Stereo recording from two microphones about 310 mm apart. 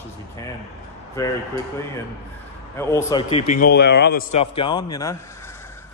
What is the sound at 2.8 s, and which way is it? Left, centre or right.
A man's voice, centre.